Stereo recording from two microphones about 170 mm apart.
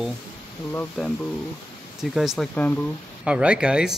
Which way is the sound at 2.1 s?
Centre (ahead or behind).